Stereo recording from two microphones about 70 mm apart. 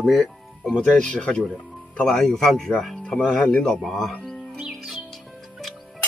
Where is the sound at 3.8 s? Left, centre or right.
Centre.